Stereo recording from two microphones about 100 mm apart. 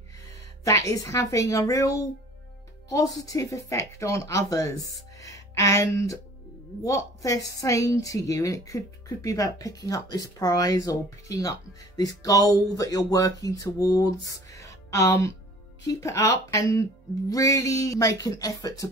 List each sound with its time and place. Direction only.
0.7 s a woman's voice: 35° left (ahead or behind)